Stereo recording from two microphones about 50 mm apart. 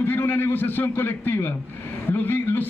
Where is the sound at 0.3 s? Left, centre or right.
Left.